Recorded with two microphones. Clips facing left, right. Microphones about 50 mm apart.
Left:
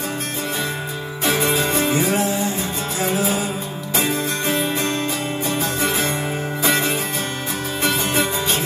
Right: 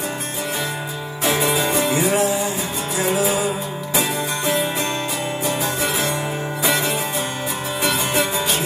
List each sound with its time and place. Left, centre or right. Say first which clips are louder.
1.4 s music: even; centre
5.8 s music: left 1 dB; centre